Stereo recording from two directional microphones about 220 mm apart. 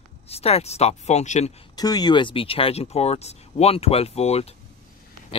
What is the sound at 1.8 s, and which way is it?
Speech, 15° left (ahead or behind).